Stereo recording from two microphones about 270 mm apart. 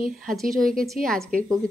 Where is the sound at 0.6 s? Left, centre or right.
Right.